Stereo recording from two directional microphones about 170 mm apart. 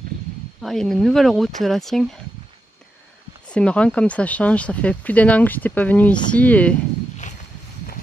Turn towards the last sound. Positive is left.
turn(degrees=45)  # may be behind; listen again after turning